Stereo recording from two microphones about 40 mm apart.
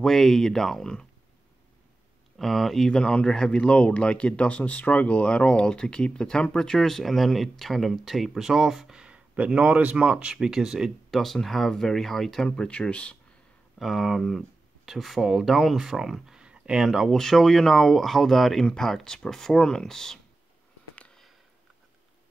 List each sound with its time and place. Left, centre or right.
0.0 s speech: centre
2.3 s speech: centre
2.9 s speech: centre
6.8 s speech: centre
8.4 s speech: centre
9.0 s a sound: right
9.9 s speech: right
10.3 s speech: centre
11.1 s speech: centre
12.4 s speech: left
13.7 s speech: centre
16.4 s a sound: right
16.8 s speech: centre
17.1 s speech: centre